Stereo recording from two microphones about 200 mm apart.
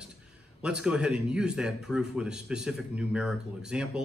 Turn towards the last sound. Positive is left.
turn(degrees=-5)  # may be behind; listen again after turning